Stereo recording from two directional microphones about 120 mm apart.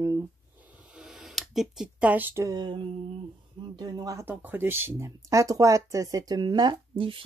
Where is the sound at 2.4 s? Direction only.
35° right (ahead or behind).